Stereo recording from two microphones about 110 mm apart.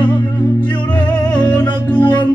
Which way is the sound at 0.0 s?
15° left (ahead or behind).